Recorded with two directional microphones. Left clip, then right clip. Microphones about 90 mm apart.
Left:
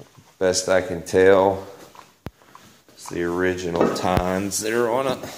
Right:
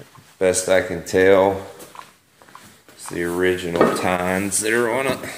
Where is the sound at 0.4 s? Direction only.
25° left (ahead or behind).